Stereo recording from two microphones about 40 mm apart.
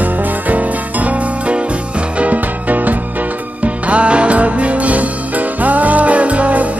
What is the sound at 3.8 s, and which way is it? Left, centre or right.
Music, right.